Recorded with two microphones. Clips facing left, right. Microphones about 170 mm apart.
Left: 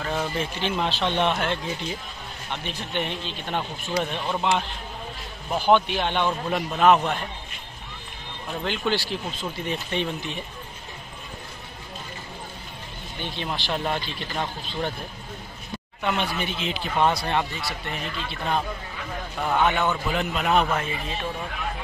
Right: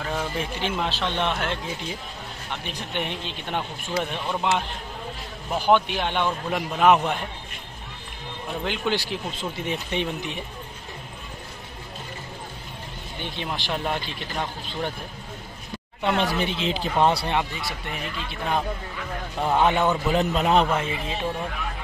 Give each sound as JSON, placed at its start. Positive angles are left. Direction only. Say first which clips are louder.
{"t": 0.0, "sound": "a sound", "louder": "left 1 dB", "side_deg": 0}
{"t": 0.4, "sound": "speech", "louder": "left 1 dB", "side_deg": -5}
{"t": 2.6, "sound": "speech", "louder": "left 1 dB", "side_deg": -15}
{"t": 5.5, "sound": "speech", "louder": "even", "side_deg": -5}
{"t": 8.6, "sound": "speech", "louder": "left 1 dB", "side_deg": -15}
{"t": 13.2, "sound": "speech", "louder": "left 1 dB", "side_deg": -10}
{"t": 16.0, "sound": "a man's voice", "louder": "right 3 dB", "side_deg": -35}
{"t": 17.2, "sound": "speech", "louder": "even", "side_deg": -15}
{"t": 19.4, "sound": "a man's voice", "louder": "right 2 dB", "side_deg": -30}